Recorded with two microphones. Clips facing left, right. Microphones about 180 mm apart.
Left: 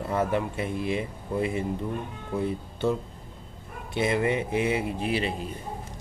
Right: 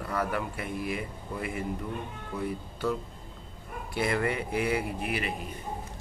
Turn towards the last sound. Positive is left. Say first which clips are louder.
# left 4 dB
turn(degrees=30)  # may be behind; listen again after turning